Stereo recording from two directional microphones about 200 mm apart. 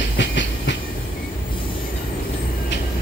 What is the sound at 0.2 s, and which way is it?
Train, 65° left (ahead or behind).